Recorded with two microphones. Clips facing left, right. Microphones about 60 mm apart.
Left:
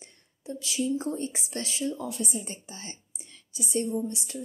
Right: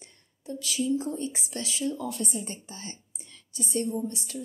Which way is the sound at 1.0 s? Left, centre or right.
Left.